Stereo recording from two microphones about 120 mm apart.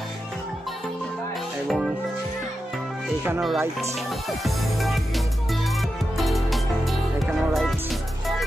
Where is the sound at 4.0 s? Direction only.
Centre (ahead or behind).